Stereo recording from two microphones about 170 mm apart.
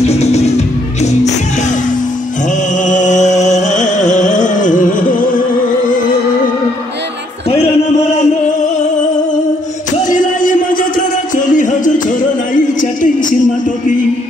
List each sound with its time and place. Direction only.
0.0 s music: 40° left (ahead or behind)
2.8 s music: 45° left (ahead or behind)
10.0 s a sound: 50° left (ahead or behind)
11.3 s music: 50° left (ahead or behind)